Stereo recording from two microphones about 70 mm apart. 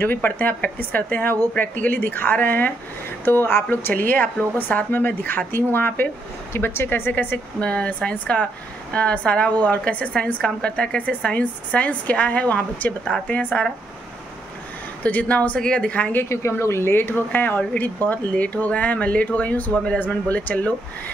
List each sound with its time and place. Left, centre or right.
0.0 s a woman's voice: left
15.0 s speech: left
16.3 s speech: left